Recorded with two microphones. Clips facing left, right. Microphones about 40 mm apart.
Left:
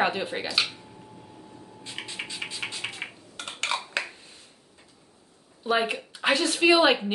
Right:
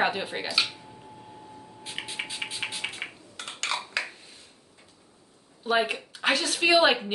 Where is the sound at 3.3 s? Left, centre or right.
Left.